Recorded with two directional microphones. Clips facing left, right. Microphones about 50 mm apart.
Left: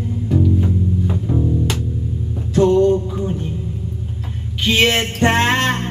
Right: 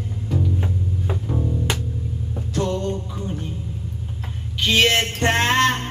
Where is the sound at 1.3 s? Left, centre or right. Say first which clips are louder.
Left 5 dB; centre.